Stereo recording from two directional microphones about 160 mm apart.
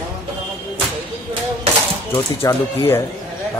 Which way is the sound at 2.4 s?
20° left (ahead or behind).